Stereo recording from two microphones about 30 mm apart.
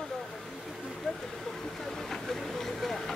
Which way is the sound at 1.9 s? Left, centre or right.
Centre.